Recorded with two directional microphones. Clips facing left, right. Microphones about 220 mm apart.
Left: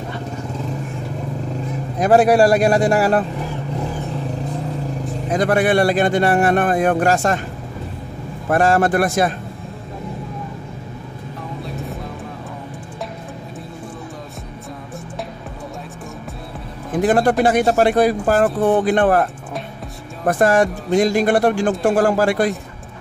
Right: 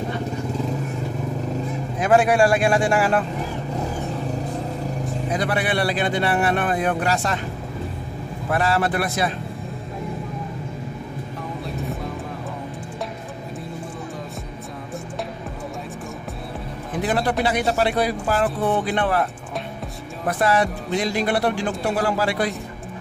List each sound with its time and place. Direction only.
2.0 s speech: 35° left (ahead or behind)
5.3 s speech: 45° left (ahead or behind)
8.5 s speech: 45° left (ahead or behind)
17.0 s speech: 45° left (ahead or behind)
20.2 s speech: 45° left (ahead or behind)